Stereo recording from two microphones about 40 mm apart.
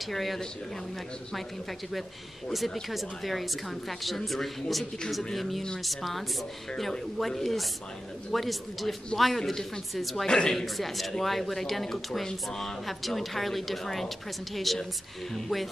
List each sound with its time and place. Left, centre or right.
0.0 s speech: centre
2.5 s speech: centre
10.2 s a woman's voice: centre
10.6 s speech: centre